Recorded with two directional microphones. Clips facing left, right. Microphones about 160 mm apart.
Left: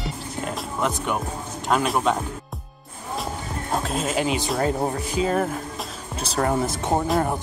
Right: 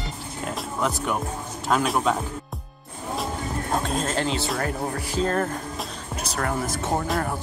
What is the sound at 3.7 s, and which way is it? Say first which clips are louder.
Speech: left 1 dB; centre (ahead or behind).